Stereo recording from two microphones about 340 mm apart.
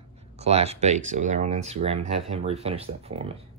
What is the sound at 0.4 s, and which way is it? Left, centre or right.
Speech, centre.